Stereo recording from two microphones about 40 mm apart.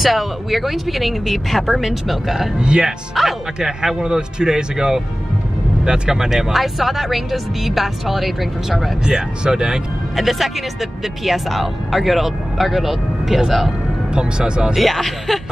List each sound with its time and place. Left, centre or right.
0.0 s speech: centre
2.6 s speech: right
3.2 s speech: centre
3.5 s speech: centre
6.3 s speech: centre
9.0 s speech: centre
10.1 s speech: centre
14.1 s speech: right
14.8 s speech: centre